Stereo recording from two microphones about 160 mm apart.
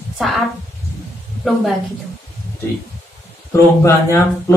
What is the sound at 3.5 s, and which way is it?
Speech, 15° left (ahead or behind).